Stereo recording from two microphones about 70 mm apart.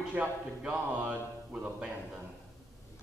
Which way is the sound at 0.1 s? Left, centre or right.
Centre.